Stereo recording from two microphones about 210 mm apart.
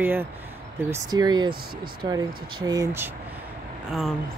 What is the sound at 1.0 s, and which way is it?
Speech, 20° right (ahead or behind).